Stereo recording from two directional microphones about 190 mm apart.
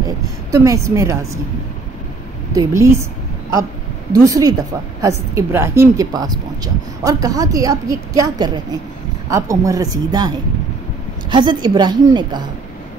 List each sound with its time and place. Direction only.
0.5 s a woman's voice: 15° right (ahead or behind)
2.5 s a woman's voice: 15° right (ahead or behind)
4.1 s a woman's voice: 20° right (ahead or behind)